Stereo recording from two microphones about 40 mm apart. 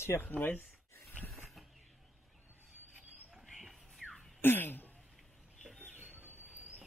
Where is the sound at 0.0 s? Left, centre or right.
Left.